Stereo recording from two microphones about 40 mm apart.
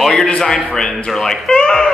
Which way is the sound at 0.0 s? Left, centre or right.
Centre.